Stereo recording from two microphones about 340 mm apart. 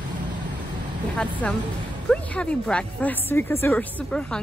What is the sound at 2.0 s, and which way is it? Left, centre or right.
A woman's voice, centre.